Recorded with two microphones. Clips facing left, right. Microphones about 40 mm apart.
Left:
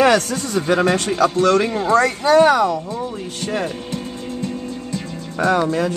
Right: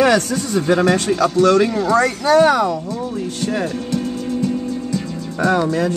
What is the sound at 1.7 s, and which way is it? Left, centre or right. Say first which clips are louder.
Speech: right 1 dB; left.